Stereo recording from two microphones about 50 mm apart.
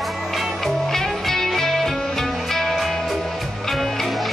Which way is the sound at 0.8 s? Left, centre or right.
Centre.